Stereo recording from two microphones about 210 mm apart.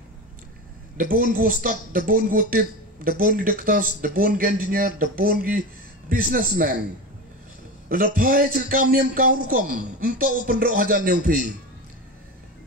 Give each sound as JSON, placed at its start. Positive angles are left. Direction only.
{"t": 0.9, "sound": "a man's voice", "side_deg": -40}
{"t": 7.9, "sound": "speech", "side_deg": -40}